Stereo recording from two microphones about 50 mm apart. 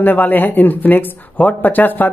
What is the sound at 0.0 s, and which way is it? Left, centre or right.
Speech, left.